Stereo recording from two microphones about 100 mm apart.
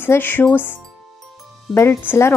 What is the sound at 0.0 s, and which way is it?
Speech, 20° left (ahead or behind).